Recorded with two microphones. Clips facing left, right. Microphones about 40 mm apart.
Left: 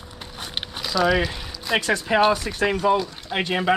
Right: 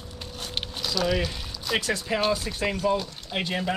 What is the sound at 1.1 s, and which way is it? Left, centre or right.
Speech, left.